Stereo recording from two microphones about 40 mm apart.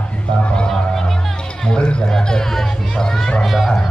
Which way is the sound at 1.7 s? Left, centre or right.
Left.